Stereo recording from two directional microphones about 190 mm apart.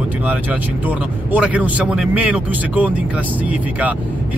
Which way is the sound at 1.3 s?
5° right (ahead or behind).